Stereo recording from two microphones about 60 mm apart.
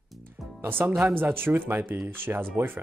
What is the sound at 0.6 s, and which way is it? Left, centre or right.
Speech, right.